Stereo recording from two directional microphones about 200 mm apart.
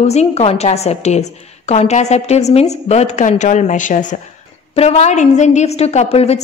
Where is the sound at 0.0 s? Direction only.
35° left (ahead or behind).